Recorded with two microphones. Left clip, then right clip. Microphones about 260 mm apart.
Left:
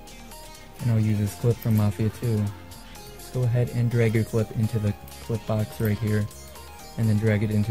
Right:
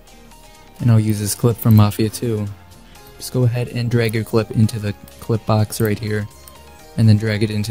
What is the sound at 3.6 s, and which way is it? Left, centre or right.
Speech, right.